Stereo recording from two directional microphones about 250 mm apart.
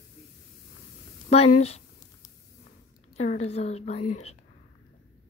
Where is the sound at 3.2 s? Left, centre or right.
Left.